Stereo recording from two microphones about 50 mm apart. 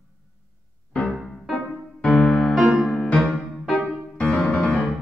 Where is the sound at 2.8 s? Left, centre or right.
Centre.